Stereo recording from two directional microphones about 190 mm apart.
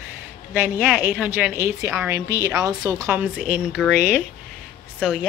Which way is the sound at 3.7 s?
Centre (ahead or behind).